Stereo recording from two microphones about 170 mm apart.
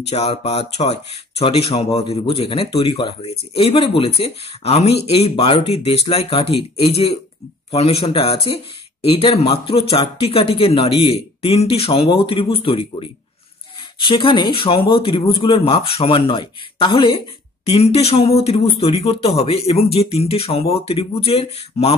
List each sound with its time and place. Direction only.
0.1 s speech: 35° left (ahead or behind)